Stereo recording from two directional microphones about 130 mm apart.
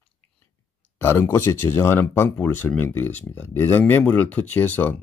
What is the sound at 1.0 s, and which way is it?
Speech, 20° left (ahead or behind).